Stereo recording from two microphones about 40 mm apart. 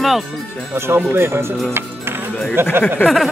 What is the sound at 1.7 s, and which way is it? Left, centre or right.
Music, right.